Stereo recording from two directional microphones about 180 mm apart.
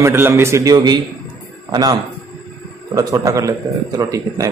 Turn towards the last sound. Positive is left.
turn(degrees=-20)  # may be behind; listen again after turning